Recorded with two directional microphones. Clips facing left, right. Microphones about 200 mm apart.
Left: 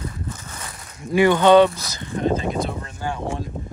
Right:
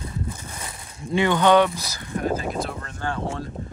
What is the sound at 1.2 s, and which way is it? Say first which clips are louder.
Speech: left 4 dB; 15° left (ahead or behind).